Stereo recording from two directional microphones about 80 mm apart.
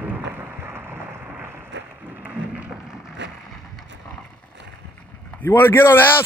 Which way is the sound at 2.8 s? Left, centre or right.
Centre.